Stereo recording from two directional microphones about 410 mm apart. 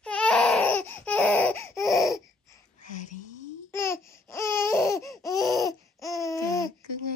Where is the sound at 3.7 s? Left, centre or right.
Centre.